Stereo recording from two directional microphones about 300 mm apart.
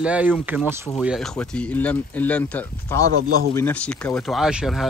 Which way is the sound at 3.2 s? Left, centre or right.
Right.